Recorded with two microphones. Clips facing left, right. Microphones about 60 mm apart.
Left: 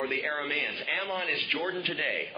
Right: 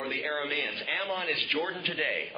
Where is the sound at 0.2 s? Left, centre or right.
Centre.